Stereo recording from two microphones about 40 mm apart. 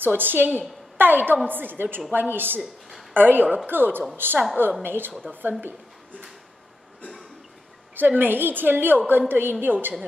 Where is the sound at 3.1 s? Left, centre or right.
Right.